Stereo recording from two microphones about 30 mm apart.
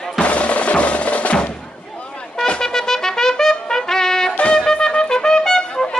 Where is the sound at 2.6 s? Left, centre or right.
Centre.